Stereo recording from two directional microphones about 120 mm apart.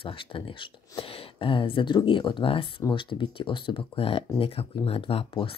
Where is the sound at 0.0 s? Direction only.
45° left (ahead or behind).